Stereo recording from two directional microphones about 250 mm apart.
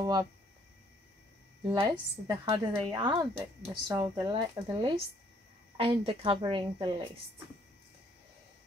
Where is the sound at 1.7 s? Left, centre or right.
Centre.